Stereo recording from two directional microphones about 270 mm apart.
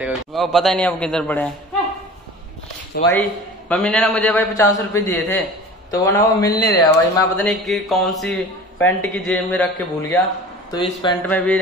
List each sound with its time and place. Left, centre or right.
0.0 s a man's voice: centre
2.9 s speech: left
3.6 s a man's voice: centre
10.7 s a man's voice: centre
11.2 s a man's voice: centre